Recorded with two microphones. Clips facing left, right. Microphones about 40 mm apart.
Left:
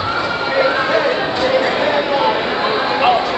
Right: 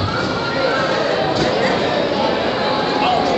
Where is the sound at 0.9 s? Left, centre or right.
Centre.